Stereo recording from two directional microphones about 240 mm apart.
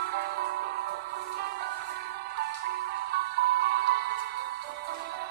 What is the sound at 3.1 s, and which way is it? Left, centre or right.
Music, right.